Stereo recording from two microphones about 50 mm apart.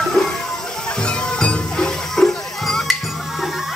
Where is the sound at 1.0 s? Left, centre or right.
Centre.